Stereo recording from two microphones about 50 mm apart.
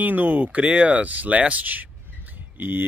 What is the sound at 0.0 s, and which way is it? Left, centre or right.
Speech, right.